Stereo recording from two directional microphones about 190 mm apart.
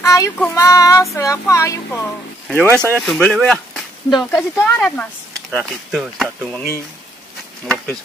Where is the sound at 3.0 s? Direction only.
5° left (ahead or behind).